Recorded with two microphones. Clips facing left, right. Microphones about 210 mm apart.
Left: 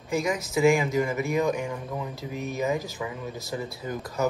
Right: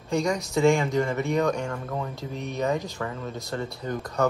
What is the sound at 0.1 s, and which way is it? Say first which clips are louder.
Speech: right 1 dB; 5° left (ahead or behind).